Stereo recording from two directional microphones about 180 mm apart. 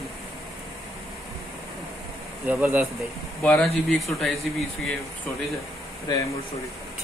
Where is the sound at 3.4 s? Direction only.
5° left (ahead or behind).